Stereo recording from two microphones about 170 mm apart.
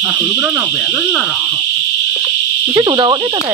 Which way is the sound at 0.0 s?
10° right (ahead or behind).